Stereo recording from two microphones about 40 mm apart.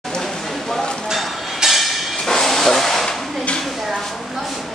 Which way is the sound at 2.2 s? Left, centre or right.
Centre.